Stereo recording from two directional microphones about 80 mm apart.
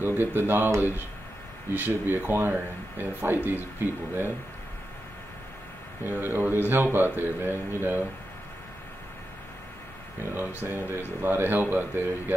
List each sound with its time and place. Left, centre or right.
0.0 s speech: right
6.0 s speech: right
10.3 s speech: right